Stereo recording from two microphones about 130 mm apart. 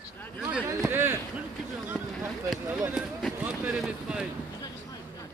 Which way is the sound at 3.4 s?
10° right (ahead or behind).